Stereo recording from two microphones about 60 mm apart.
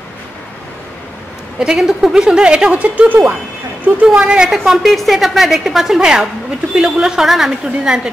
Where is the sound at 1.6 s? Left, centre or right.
Centre.